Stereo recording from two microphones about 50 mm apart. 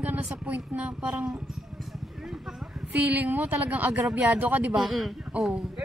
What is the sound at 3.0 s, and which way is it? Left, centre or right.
Speech, right.